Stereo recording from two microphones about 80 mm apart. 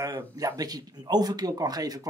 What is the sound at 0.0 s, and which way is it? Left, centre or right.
Speech, right.